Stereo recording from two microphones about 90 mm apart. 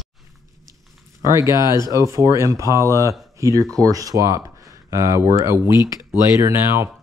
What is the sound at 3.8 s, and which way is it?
Speech, 40° right (ahead or behind).